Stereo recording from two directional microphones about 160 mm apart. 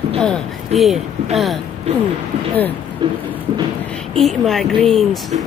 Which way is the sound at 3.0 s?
30° right (ahead or behind).